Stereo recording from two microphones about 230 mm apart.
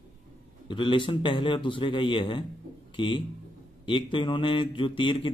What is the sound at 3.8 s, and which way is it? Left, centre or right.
Speech, left.